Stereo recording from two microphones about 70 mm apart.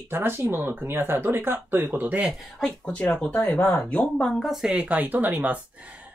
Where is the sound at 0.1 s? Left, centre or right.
Right.